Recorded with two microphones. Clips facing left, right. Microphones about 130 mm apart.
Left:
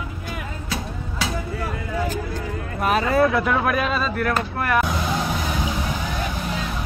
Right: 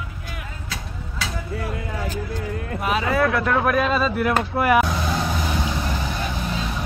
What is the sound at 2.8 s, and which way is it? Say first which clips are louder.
Speech: left 3 dB; 45° left (ahead or behind).